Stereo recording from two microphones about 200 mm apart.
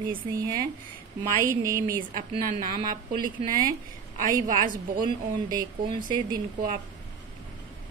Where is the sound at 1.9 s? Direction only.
45° right (ahead or behind).